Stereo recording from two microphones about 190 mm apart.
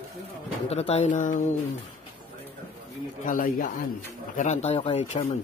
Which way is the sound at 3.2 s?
45° left (ahead or behind).